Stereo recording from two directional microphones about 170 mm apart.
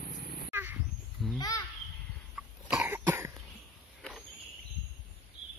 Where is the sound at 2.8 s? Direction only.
15° right (ahead or behind).